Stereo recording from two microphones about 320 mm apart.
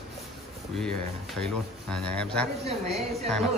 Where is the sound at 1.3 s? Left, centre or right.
Centre.